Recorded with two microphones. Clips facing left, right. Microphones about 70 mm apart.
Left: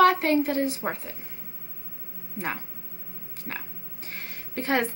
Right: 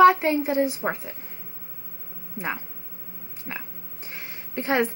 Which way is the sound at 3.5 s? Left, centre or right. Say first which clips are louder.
Right 1 dB; centre.